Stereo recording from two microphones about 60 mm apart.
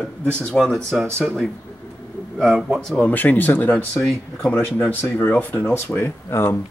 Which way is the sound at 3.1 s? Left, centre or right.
Left.